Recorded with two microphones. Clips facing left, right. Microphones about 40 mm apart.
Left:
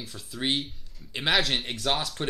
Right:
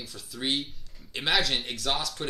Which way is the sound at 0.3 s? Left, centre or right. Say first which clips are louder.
Left 2 dB; left.